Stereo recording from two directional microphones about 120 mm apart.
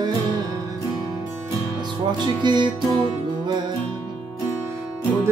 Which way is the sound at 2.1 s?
40° right (ahead or behind).